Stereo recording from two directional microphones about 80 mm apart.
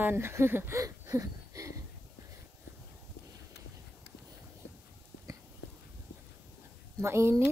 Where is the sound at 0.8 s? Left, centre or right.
Right.